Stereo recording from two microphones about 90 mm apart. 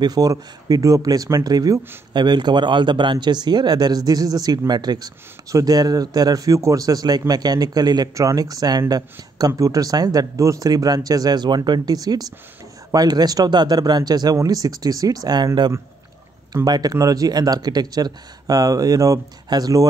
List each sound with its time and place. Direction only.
0.0 s speech: 45° right (ahead or behind)